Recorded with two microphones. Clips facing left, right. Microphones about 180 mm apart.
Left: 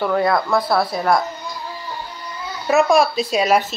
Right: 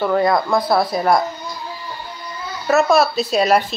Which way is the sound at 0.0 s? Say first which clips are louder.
Right 2 dB; 5° right (ahead or behind).